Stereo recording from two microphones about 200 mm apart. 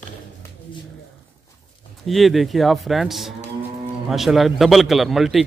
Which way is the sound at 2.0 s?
Centre (ahead or behind).